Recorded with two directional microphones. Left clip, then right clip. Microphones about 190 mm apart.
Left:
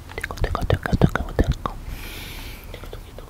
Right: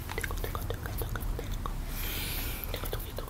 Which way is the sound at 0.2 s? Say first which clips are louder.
Left 12 dB; 40° left (ahead or behind).